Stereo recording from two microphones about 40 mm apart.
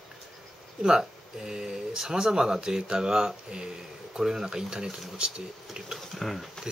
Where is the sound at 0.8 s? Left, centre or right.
Centre.